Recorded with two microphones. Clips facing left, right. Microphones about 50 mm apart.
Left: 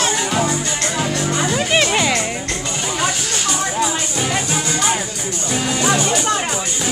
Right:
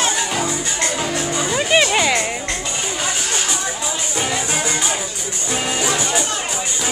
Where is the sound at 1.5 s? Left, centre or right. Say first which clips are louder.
Right 2 dB; centre.